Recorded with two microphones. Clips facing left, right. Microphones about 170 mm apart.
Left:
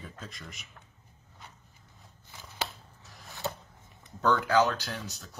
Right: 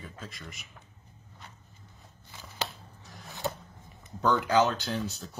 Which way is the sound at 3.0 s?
Centre (ahead or behind).